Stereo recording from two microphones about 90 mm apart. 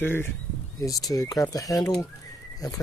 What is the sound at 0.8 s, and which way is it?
Speech, 40° left (ahead or behind).